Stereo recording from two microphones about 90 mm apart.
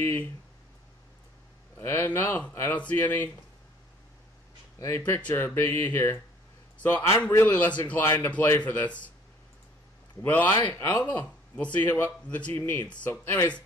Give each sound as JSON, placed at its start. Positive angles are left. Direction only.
{"t": 0.0, "sound": "speech", "side_deg": 25}
{"t": 1.8, "sound": "speech", "side_deg": 25}
{"t": 4.7, "sound": "speech", "side_deg": 30}
{"t": 10.2, "sound": "speech", "side_deg": 20}